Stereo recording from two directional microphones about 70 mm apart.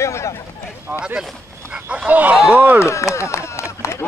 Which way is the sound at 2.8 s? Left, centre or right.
Left.